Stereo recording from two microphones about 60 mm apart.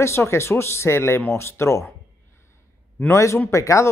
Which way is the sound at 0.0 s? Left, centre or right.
Left.